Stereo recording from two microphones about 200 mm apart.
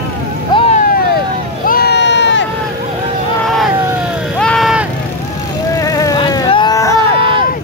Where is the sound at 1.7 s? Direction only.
55° left (ahead or behind).